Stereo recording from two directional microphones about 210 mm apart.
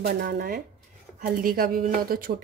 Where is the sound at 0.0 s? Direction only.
45° right (ahead or behind).